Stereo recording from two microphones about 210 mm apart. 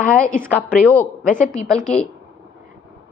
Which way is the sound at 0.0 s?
5° left (ahead or behind).